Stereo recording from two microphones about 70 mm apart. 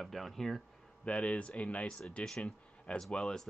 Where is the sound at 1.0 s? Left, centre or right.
Centre.